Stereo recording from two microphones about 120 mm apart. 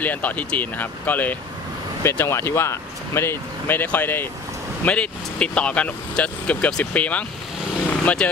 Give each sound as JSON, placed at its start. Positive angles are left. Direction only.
{"t": 0.0, "sound": "speech", "side_deg": 15}